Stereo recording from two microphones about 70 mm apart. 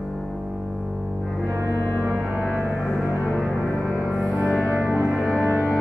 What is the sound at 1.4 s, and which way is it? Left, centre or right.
Music, right.